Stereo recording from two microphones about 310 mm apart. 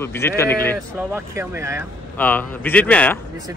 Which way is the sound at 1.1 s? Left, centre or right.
Centre.